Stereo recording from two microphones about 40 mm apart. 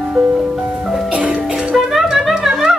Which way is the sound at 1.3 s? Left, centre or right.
Centre.